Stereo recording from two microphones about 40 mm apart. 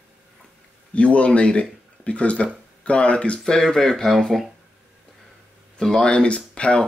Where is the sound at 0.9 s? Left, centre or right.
Left.